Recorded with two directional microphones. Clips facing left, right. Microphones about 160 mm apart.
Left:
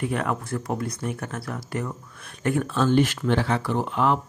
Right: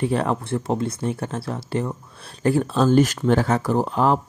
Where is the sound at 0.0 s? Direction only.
30° right (ahead or behind).